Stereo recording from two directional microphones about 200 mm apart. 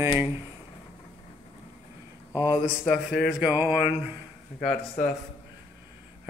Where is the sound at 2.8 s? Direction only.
Centre (ahead or behind).